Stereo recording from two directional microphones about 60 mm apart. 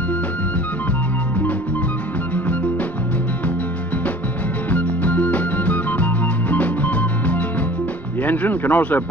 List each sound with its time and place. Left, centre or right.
2.3 s music: left
8.2 s speech: left